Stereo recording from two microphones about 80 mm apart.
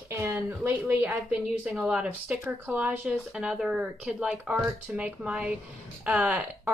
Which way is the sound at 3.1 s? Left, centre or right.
Centre.